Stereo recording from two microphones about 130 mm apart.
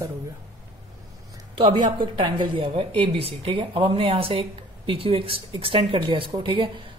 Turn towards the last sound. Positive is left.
turn(degrees=-40)  # may be behind; listen again after turning